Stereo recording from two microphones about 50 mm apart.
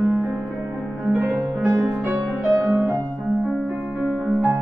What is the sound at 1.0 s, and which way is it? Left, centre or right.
Music, right.